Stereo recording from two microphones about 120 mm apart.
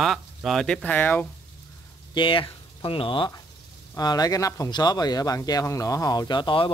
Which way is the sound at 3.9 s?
30° left (ahead or behind).